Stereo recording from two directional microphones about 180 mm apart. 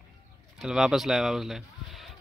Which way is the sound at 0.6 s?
5° right (ahead or behind).